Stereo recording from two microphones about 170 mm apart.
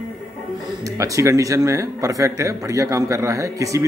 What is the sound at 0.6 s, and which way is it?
Speech, 20° right (ahead or behind).